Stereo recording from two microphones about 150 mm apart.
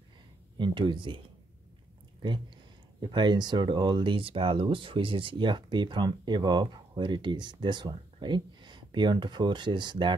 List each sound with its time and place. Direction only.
0.6 s speech: 30° right (ahead or behind)
2.2 s speech: 30° right (ahead or behind)